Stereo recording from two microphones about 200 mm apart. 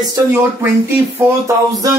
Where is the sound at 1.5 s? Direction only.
15° right (ahead or behind).